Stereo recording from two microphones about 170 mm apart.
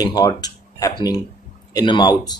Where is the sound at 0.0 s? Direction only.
25° left (ahead or behind).